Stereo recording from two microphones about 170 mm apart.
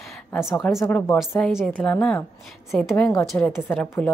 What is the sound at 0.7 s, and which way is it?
A woman's voice, 15° left (ahead or behind).